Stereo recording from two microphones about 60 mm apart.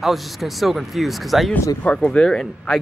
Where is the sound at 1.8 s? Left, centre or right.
Centre.